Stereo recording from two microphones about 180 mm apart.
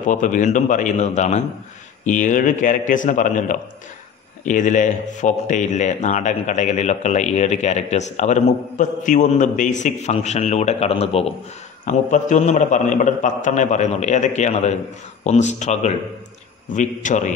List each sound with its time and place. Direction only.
0.0 s speech: 45° left (ahead or behind)
11.8 s speech: 45° left (ahead or behind)